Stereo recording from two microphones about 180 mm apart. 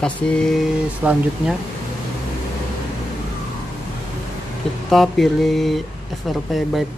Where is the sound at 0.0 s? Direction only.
5° left (ahead or behind).